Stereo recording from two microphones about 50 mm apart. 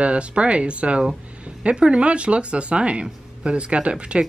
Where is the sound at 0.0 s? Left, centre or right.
Right.